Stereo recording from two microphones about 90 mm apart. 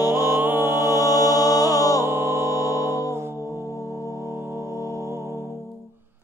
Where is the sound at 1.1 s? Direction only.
40° left (ahead or behind).